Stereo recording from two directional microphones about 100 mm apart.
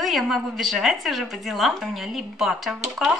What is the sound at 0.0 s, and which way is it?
A woman's voice, centre (ahead or behind).